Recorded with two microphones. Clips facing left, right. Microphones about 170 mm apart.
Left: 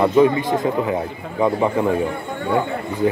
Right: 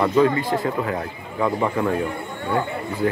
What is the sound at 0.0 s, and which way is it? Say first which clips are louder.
Speech: left 3 dB; 20° left (ahead or behind).